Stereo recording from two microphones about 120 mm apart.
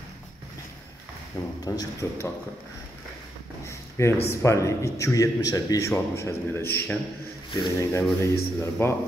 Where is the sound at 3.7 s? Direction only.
25° left (ahead or behind).